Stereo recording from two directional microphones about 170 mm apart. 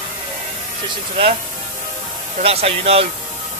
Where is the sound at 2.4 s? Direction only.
35° right (ahead or behind).